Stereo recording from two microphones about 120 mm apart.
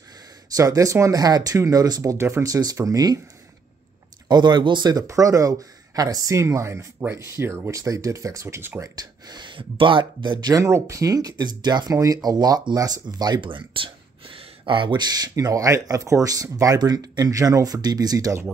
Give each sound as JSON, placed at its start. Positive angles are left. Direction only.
{"t": 0.6, "sound": "speech", "side_deg": -30}
{"t": 4.3, "sound": "speech", "side_deg": -35}
{"t": 8.9, "sound": "speech", "side_deg": -35}
{"t": 10.5, "sound": "speech", "side_deg": -25}